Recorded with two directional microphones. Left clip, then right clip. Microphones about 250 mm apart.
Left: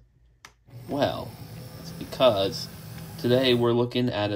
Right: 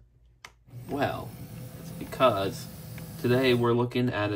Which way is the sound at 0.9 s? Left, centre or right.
Centre.